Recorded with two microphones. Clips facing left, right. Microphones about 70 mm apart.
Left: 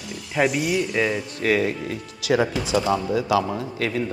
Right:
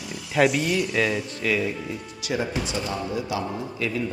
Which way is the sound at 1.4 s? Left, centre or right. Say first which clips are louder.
Left 6 dB; left.